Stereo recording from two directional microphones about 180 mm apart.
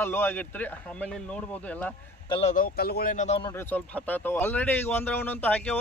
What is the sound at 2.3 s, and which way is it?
Speech, 35° left (ahead or behind).